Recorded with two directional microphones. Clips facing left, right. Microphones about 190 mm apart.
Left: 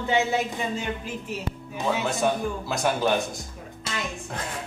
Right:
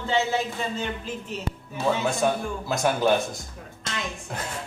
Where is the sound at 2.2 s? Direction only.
Centre (ahead or behind).